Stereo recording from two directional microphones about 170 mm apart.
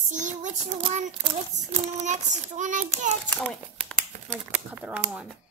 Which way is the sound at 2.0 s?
45° right (ahead or behind).